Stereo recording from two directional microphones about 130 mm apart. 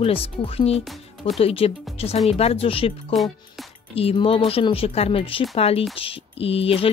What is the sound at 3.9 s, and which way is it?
Speech, 45° left (ahead or behind).